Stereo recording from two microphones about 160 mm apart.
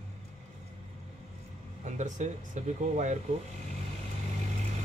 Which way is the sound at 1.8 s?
50° right (ahead or behind).